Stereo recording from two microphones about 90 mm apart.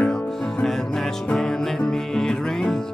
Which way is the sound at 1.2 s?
5° left (ahead or behind).